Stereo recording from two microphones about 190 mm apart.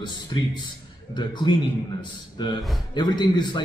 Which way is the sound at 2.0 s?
25° left (ahead or behind).